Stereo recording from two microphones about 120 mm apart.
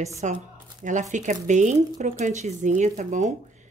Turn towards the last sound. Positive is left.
turn(degrees=-70)  # may be behind; listen again after turning